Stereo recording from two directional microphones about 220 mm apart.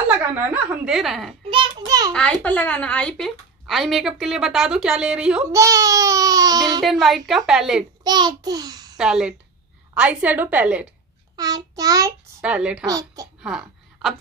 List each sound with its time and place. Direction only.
0.8 s a woman's voice: centre (ahead or behind)
1.5 s a sound: 20° right (ahead or behind)
2.1 s a woman's voice: 5° left (ahead or behind); by 6.8 s 20° right (ahead or behind)
6.8 s a woman's voice: centre (ahead or behind)
8.0 s a child's voice: 20° right (ahead or behind)
8.9 s a woman's voice: 5° right (ahead or behind)
12.8 s a woman's voice: 15° right (ahead or behind)
13.4 s a sound: centre (ahead or behind)